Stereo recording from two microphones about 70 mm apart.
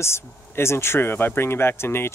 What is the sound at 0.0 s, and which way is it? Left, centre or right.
Speech, left.